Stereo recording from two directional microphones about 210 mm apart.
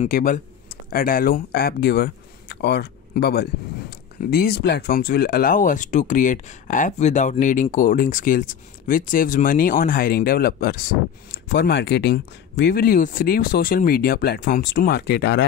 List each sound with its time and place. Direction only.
0.0 s speech: 40° left (ahead or behind)